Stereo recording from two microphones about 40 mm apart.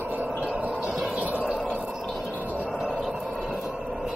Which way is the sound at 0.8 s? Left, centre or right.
Centre.